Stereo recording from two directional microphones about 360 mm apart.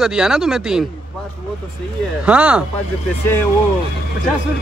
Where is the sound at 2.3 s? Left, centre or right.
Centre.